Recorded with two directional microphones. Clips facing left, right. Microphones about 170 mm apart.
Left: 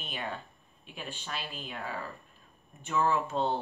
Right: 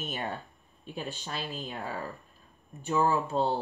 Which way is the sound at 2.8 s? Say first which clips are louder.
Right 2 dB; 30° right (ahead or behind).